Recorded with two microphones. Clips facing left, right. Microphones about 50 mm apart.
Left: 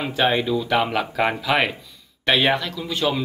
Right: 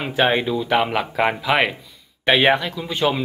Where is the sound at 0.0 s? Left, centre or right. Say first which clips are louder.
Right 2 dB; centre.